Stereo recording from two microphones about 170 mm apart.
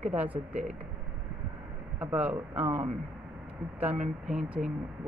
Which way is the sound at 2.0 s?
10° right (ahead or behind).